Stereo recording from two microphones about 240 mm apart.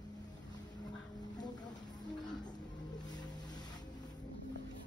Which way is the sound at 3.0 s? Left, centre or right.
Centre.